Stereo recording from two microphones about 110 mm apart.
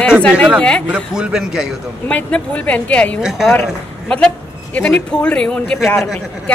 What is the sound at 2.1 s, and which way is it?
A woman's voice, 10° left (ahead or behind).